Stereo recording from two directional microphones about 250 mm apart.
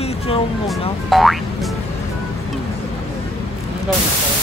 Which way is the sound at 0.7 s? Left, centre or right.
Centre.